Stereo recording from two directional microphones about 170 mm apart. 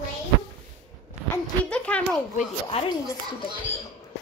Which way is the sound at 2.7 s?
35° left (ahead or behind).